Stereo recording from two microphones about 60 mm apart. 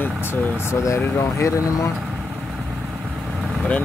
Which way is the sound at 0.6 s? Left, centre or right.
Left.